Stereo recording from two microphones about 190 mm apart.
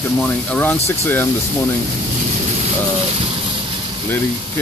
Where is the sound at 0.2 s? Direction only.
10° left (ahead or behind).